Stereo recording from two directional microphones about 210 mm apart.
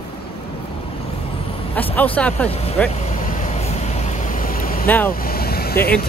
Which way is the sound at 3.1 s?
40° left (ahead or behind).